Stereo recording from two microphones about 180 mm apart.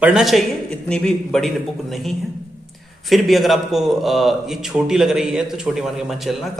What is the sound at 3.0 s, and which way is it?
Speech, centre (ahead or behind).